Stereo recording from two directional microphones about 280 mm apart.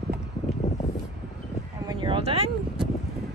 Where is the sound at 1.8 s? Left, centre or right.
Centre.